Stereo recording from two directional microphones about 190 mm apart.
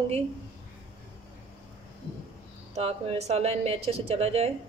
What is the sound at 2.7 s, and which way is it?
A woman's voice, 30° right (ahead or behind).